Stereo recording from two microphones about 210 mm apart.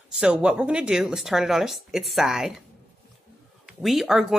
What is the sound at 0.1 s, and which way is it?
Speech, 5° right (ahead or behind).